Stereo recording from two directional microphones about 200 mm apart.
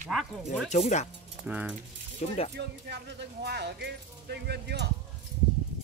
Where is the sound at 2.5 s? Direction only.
55° right (ahead or behind).